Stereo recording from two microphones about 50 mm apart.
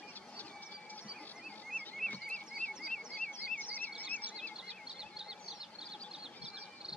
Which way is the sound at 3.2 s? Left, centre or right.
Left.